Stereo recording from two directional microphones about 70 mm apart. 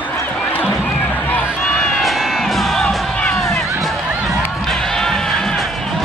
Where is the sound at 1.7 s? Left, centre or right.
Centre.